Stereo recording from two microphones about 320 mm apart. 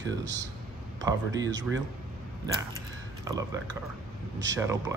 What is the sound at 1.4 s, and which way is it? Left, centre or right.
Speech, right.